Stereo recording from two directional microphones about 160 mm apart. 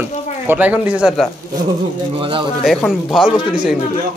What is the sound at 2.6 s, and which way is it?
Speech, centre (ahead or behind).